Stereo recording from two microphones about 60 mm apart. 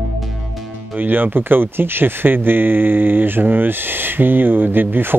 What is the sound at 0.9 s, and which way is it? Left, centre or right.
Speech, right.